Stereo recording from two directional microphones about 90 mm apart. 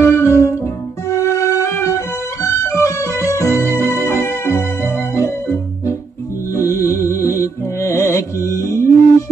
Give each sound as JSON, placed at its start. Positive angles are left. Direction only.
{"t": 0.0, "sound": "music", "side_deg": 30}